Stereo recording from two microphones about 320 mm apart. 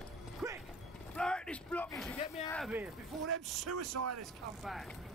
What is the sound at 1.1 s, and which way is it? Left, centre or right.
Speech, centre.